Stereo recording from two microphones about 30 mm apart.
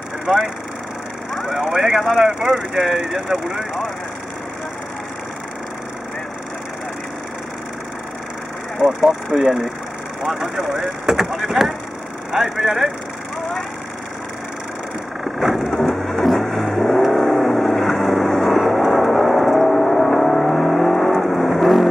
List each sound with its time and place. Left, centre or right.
0.3 s speech: centre
1.8 s speech: centre
2.7 s speech: centre
9.0 s speech: centre
15.3 s vehicle: centre
21.4 s vehicle: centre